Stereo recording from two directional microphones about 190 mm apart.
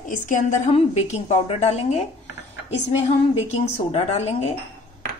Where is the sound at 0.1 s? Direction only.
40° left (ahead or behind).